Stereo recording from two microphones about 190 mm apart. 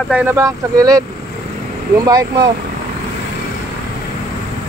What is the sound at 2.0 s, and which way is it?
Speech, 20° right (ahead or behind).